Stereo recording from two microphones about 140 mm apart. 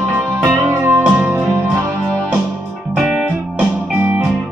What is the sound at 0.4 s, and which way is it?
Music, 15° right (ahead or behind).